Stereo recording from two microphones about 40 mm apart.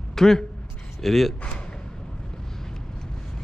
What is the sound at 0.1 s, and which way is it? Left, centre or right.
Speech, centre.